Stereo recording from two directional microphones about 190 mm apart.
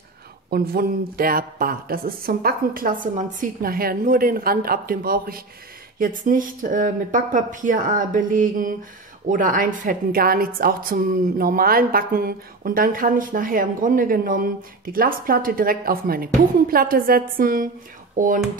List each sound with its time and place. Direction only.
0.5 s a woman's voice: 50° right (ahead or behind)